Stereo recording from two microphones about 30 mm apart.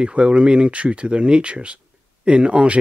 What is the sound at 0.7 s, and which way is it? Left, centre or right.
Speech, right.